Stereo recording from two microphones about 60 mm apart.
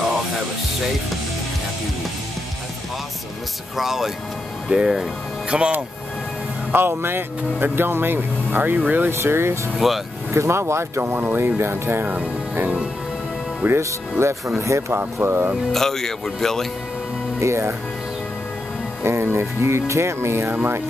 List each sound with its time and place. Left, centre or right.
3.7 s speech: centre
4.6 s speech: centre
6.7 s speech: right
9.1 s speech: right
9.8 s speech: centre
10.3 s speech: right
12.1 s speech: right
13.7 s speech: right
15.1 s speech: right
15.7 s speech: centre
17.4 s speech: right
19.0 s speech: right